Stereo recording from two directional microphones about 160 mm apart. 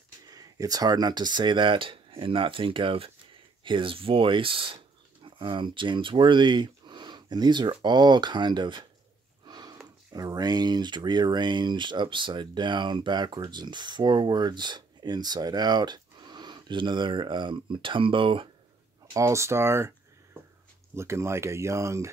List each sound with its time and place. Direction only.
0.3 s speech: 25° right (ahead or behind)
9.5 s sniff: 25° right (ahead or behind)
10.1 s speech: 25° right (ahead or behind)
19.1 s speech: 20° right (ahead or behind)
20.9 s speech: 15° right (ahead or behind)